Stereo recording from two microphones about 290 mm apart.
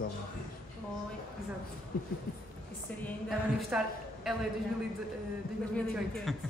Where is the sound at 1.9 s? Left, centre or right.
Left.